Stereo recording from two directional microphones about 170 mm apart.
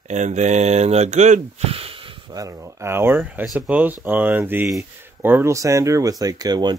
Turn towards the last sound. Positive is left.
turn(degrees=-25)  # may be behind; listen again after turning